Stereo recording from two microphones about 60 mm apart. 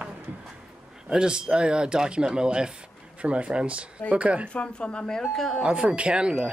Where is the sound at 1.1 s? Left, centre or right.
Centre.